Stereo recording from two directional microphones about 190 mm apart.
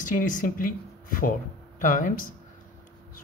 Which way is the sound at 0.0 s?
45° left (ahead or behind).